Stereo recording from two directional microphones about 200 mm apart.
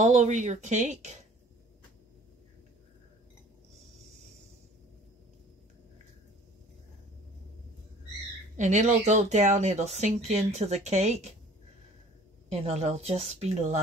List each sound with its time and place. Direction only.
0.0 s speech: 35° right (ahead or behind)
8.5 s speech: 35° right (ahead or behind)
12.4 s speech: 35° right (ahead or behind)